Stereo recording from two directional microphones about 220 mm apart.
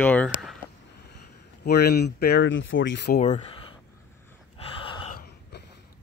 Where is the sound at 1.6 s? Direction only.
50° left (ahead or behind).